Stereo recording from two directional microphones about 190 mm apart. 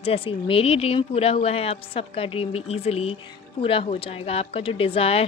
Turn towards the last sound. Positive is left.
turn(degrees=30)  # may be behind; listen again after turning